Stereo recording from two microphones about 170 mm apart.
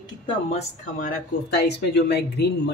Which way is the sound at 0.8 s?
55° left (ahead or behind).